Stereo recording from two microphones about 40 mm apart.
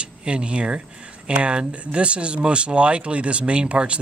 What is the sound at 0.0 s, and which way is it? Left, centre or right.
Speech, right.